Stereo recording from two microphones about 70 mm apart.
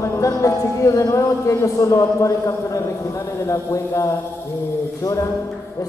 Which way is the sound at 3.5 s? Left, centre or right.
Left.